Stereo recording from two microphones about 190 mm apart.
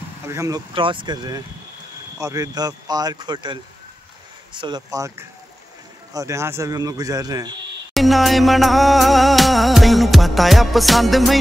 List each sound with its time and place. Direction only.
0.3 s speech: 15° right (ahead or behind)
0.7 s speech: 25° right (ahead or behind)
4.6 s speech: 25° right (ahead or behind)
7.9 s music: centre (ahead or behind)